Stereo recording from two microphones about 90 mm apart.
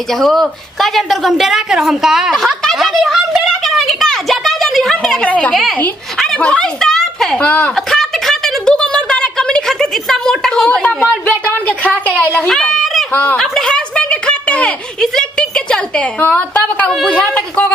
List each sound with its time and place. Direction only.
0.1 s a woman's voice: 5° left (ahead or behind)
5.5 s a woman's voice: centre (ahead or behind)
7.7 s a sound: 5° left (ahead or behind)
11.2 s a woman's voice: 15° left (ahead or behind)
12.4 s a sound: 5° left (ahead or behind)
13.1 s speech: 20° left (ahead or behind)
13.4 s a woman's voice: 5° left (ahead or behind)